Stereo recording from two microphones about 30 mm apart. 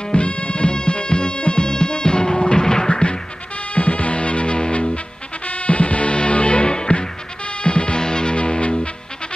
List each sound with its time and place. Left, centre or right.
0.1 s music: left
2.9 s music: left
3.7 s music: left
5.5 s music: left
8.0 s music: left